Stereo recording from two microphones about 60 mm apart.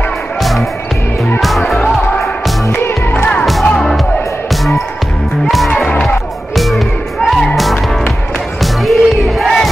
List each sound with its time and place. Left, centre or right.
1.4 s music: centre
2.7 s music: left
3.6 s music: centre
6.0 s music: centre
8.8 s battle cry: centre